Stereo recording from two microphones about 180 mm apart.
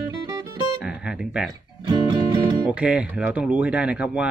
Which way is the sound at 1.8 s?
25° right (ahead or behind).